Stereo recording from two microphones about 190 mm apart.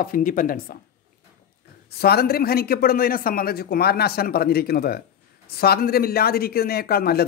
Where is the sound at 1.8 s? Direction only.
55° left (ahead or behind).